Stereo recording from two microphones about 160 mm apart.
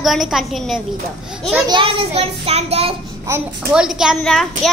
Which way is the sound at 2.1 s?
40° right (ahead or behind).